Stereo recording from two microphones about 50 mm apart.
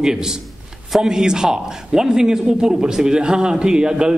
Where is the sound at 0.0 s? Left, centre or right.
Centre.